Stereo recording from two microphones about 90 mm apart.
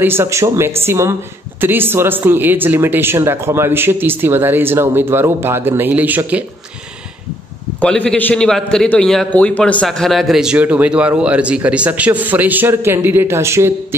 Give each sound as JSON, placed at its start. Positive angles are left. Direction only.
{"t": 0.0, "sound": "a man's voice", "side_deg": -25}
{"t": 7.8, "sound": "speech", "side_deg": 10}
{"t": 9.8, "sound": "speech", "side_deg": 0}